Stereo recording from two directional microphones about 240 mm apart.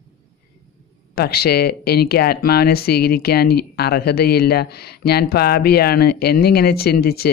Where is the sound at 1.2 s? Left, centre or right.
Left.